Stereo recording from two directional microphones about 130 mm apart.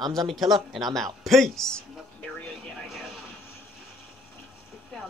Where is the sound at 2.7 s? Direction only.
Centre (ahead or behind).